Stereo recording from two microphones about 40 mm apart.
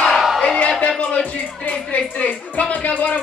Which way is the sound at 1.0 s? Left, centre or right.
Left.